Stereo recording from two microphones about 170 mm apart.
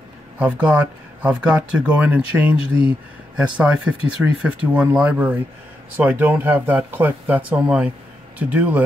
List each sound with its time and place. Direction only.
0.4 s speech: 10° right (ahead or behind)